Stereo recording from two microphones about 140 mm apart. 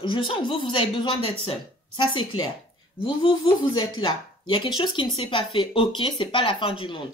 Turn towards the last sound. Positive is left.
turn(degrees=40)  # may be behind; listen again after turning